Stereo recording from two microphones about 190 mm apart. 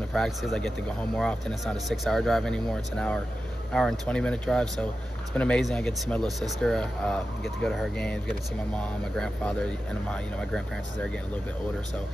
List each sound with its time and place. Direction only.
0.1 s speech: centre (ahead or behind)